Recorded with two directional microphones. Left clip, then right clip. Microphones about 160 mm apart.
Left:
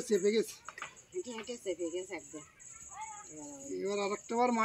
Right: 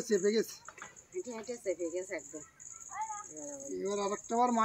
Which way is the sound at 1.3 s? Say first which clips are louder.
Right 4 dB; 75° left (ahead or behind).